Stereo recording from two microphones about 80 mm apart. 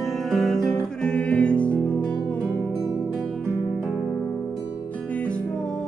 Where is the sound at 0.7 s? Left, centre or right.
Centre.